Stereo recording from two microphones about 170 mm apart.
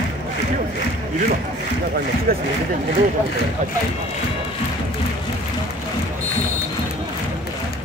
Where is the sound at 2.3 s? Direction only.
60° right (ahead or behind).